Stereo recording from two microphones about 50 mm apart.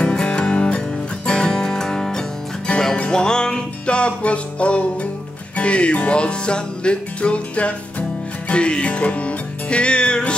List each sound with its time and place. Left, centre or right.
0.0 s music: centre